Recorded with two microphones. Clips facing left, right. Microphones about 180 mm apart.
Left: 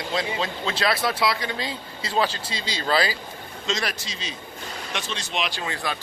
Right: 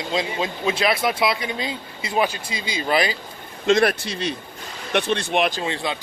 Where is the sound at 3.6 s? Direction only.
55° right (ahead or behind).